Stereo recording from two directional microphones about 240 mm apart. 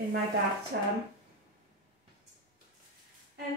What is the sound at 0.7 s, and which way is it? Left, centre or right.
Speech, right.